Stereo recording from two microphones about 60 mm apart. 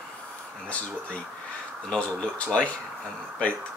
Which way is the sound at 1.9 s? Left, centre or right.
Centre.